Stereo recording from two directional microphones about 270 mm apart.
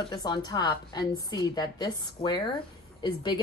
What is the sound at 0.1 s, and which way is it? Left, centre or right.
A woman's voice, centre.